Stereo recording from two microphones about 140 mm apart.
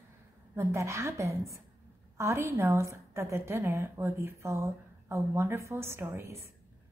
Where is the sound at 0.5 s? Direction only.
20° right (ahead or behind).